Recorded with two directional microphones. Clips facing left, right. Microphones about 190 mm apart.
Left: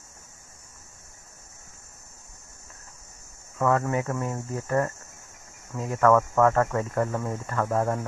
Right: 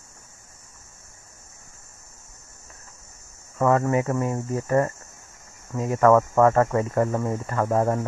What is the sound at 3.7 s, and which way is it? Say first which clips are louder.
Speech: right 4 dB; 10° right (ahead or behind).